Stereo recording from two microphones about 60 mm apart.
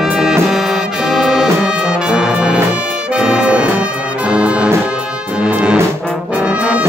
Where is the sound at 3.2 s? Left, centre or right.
Centre.